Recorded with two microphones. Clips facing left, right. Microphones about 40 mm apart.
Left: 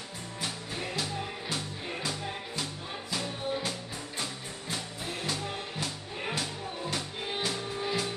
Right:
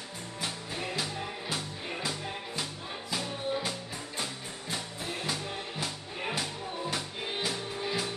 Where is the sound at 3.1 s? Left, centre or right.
Centre.